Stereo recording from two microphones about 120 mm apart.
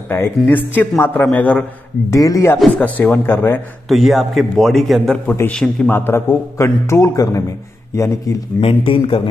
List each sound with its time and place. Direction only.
0.5 s speech: 15° left (ahead or behind)
2.0 s a man's voice: 30° left (ahead or behind)
2.8 s speech: 15° left (ahead or behind)
3.9 s a man's voice: centre (ahead or behind)
5.2 s a man's voice: 20° left (ahead or behind)
5.5 s a man's voice: 5° left (ahead or behind)
5.9 s a man's voice: 20° left (ahead or behind)
8.5 s speech: 50° left (ahead or behind)